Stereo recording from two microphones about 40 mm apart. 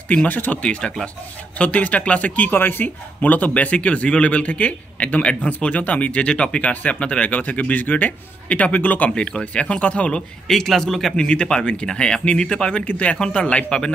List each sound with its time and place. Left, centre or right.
0.3 s speech: left
0.6 s speech: left
1.6 s a man's voice: left
2.5 s speech: left
3.2 s a man's voice: left
9.1 s speech: left
10.5 s a man's voice: centre
11.1 s speech: left
12.9 s a man's voice: left
13.7 s speech: centre